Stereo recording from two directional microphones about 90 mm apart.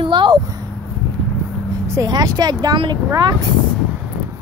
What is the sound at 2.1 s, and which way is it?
Speech, 50° right (ahead or behind).